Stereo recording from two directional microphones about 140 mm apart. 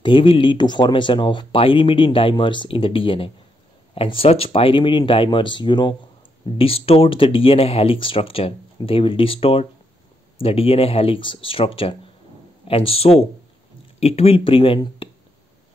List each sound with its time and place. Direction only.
0.0 s speech: 35° left (ahead or behind)